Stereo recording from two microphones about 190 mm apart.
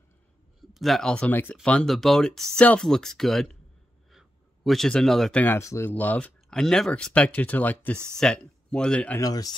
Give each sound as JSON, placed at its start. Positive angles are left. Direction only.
{"t": 0.6, "sound": "speech", "side_deg": 0}
{"t": 9.2, "sound": "speech", "side_deg": 20}